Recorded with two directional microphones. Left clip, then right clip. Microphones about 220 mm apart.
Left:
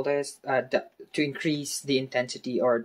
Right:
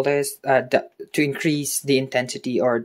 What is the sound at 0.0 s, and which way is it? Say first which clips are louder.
Speech: right 7 dB; 35° right (ahead or behind).